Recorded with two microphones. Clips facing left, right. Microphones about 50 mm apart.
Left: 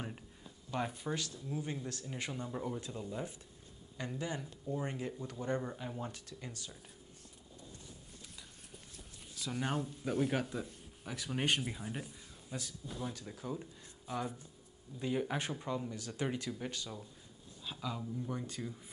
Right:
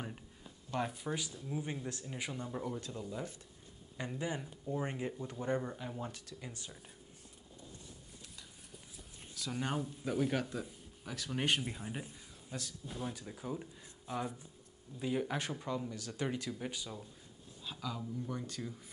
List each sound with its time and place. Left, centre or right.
0.7 s speech: centre
1.2 s speech: centre
2.0 s speech: centre
3.9 s speech: centre
5.6 s speech: centre
9.3 s speech: centre
11.8 s a sound: centre
13.1 s speech: centre
16.7 s speech: centre
17.6 s speech: centre